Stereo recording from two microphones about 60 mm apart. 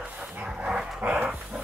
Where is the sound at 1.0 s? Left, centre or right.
Right.